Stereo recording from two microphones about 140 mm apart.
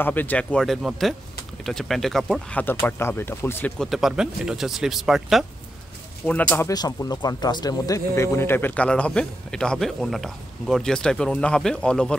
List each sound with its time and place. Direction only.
0.0 s speech: 15° left (ahead or behind)
2.6 s speech: 15° left (ahead or behind)
3.8 s speech: centre (ahead or behind)
6.2 s speech: 10° left (ahead or behind)
6.7 s speech: 30° left (ahead or behind); by 12.2 s 5° left (ahead or behind)